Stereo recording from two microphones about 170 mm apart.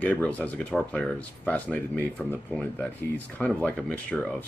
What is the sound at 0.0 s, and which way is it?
Speech, 10° left (ahead or behind).